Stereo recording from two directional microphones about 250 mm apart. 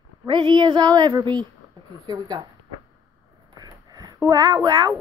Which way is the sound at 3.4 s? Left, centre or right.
Centre.